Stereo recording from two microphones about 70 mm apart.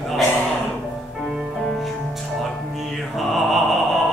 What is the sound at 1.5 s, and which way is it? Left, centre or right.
Music, centre.